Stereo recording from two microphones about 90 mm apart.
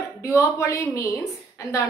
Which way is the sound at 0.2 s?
35° left (ahead or behind).